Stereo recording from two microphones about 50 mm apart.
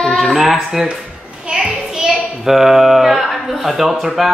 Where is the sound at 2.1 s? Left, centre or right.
Centre.